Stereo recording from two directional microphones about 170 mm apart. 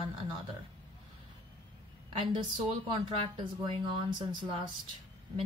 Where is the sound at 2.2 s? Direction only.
30° right (ahead or behind).